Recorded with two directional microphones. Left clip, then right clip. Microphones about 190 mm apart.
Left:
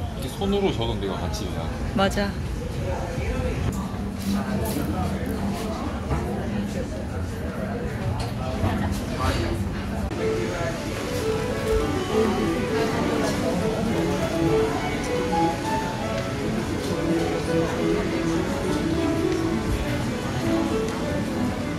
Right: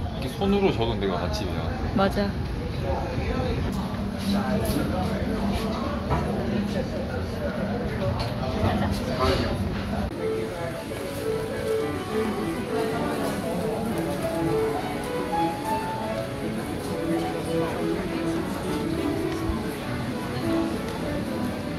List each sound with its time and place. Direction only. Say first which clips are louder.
2.0 s speech: left 1 dB; 5° right (ahead or behind)